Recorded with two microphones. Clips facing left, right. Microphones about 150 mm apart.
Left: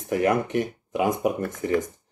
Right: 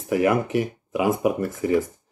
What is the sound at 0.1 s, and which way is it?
Speech, 5° right (ahead or behind).